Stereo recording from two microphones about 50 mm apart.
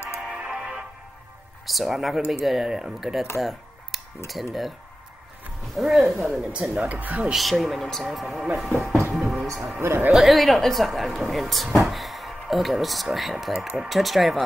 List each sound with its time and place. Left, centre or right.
0.2 s music: centre
1.7 s speech: centre
3.3 s a sound: centre
4.3 s speech: centre
5.8 s speech: centre
6.5 s speech: right
7.3 s speech: centre
9.1 s a sound: centre
9.8 s speech: right
10.1 s speech: centre
13.5 s speech: centre